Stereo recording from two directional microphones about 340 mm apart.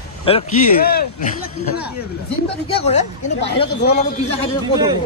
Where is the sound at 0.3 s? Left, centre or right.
Centre.